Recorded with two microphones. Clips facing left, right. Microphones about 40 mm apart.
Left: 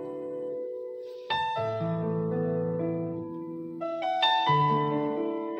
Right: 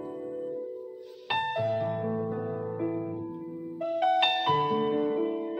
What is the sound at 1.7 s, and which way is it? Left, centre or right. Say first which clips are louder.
Music: right 1 dB; centre.